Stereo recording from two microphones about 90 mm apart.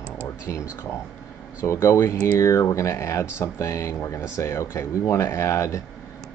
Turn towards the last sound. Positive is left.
turn(degrees=35)  # may be behind; listen again after turning